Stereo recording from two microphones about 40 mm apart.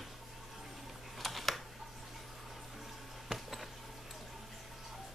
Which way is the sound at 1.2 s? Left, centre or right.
Centre.